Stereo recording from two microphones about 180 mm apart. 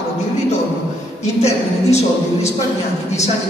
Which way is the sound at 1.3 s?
35° left (ahead or behind).